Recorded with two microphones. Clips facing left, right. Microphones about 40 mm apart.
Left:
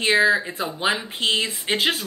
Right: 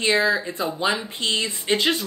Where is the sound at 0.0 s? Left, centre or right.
Centre.